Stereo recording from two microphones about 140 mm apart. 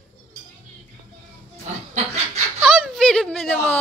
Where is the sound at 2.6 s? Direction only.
5° left (ahead or behind).